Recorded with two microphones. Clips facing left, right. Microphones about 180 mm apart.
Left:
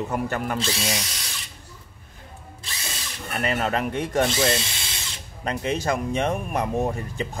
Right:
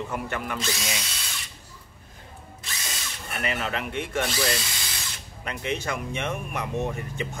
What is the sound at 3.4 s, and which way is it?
Speech, 40° left (ahead or behind).